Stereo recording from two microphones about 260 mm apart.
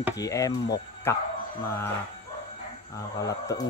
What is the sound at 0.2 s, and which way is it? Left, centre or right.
Speech, centre.